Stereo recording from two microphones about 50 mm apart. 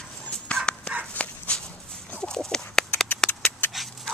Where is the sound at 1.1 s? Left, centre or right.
Left.